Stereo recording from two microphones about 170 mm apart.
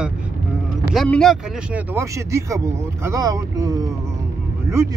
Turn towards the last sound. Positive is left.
turn(degrees=-15)  # may be behind; listen again after turning